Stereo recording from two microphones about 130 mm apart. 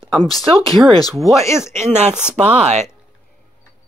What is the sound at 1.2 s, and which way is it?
Speech, 25° left (ahead or behind).